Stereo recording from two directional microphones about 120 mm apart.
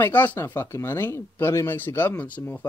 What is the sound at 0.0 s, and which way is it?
Speech, 15° left (ahead or behind).